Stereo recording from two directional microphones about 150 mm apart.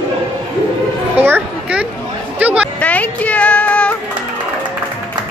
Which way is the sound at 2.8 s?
10° left (ahead or behind).